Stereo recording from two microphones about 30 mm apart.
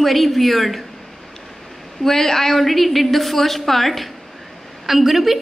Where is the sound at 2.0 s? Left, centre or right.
Centre.